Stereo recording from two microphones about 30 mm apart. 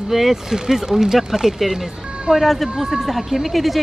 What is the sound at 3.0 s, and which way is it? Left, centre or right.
Speech, centre.